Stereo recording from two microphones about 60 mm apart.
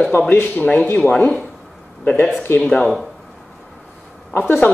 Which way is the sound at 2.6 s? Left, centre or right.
Centre.